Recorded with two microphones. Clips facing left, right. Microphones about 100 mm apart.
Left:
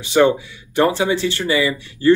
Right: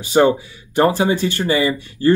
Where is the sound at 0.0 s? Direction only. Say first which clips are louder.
Even; 40° right (ahead or behind).